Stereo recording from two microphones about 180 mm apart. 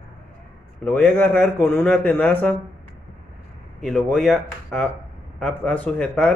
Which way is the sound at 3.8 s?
Centre (ahead or behind).